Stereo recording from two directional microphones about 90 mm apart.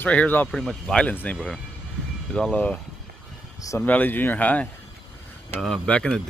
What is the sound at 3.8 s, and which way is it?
Speech, 20° left (ahead or behind).